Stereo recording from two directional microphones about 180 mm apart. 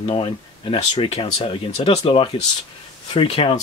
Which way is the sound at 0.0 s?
30° left (ahead or behind).